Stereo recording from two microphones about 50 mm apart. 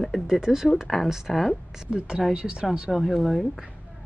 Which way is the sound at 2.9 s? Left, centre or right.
Centre.